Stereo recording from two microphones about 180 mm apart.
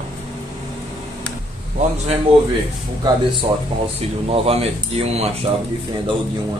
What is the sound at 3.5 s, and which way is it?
Speech, 25° right (ahead or behind).